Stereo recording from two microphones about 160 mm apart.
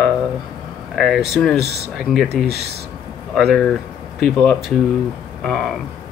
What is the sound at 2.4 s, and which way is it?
Speech, 90° right.